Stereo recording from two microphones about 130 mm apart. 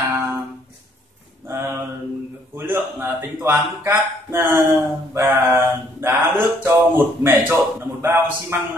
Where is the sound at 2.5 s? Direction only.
20° right (ahead or behind).